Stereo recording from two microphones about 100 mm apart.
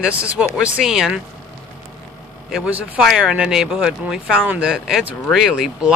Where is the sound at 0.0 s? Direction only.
10° right (ahead or behind).